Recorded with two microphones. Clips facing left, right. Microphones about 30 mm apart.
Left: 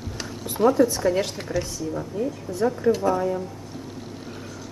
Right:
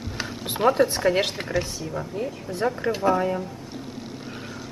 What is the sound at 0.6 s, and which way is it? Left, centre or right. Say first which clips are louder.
Speech: left 1 dB; right.